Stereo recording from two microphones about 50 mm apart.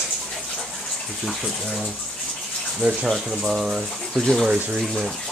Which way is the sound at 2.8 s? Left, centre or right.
Centre.